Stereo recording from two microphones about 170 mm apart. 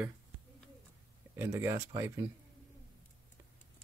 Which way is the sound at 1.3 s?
15° right (ahead or behind).